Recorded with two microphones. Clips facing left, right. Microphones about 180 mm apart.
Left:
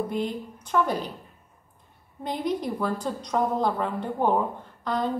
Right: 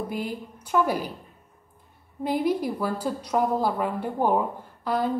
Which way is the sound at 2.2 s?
10° right (ahead or behind).